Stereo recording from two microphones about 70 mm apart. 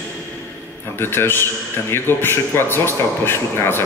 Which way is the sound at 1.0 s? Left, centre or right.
Left.